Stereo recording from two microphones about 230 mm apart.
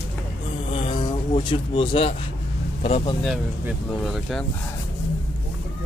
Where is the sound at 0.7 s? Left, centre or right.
Left.